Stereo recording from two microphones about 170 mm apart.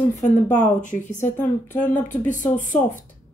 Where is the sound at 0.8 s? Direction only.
45° left (ahead or behind).